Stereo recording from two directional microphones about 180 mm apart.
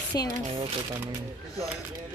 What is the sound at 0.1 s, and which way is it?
Speech, 20° left (ahead or behind).